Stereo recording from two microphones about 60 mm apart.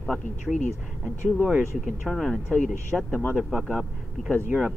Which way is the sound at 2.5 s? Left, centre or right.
Left.